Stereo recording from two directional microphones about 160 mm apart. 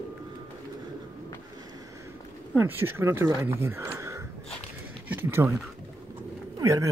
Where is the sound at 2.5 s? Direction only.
15° right (ahead or behind).